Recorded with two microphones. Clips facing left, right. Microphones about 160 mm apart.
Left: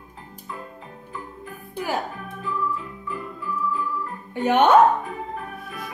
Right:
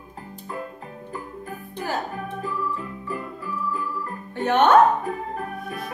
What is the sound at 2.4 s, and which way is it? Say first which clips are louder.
Organ: left 3 dB; 40° right (ahead or behind).